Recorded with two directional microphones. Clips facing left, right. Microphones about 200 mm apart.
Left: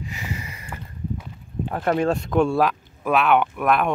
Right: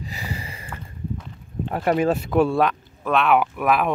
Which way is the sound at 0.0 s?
35° right (ahead or behind).